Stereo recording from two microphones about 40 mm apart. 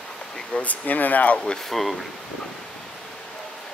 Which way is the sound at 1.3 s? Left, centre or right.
Centre.